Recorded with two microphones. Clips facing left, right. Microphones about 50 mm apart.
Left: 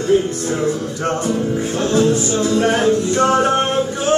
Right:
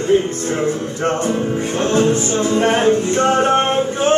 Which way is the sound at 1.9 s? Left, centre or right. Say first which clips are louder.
Even; right.